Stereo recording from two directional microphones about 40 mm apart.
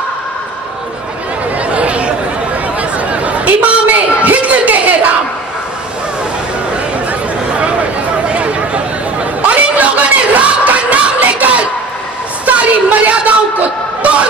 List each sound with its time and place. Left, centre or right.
1.6 s chatter: right
8.3 s chatter: right
12.4 s a sound: right